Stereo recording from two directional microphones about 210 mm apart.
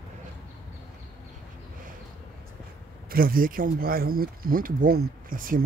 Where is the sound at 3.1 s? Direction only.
45° right (ahead or behind).